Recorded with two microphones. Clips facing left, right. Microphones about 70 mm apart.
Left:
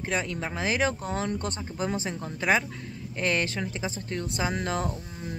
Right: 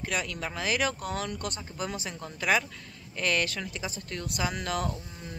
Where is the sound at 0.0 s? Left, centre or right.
Left.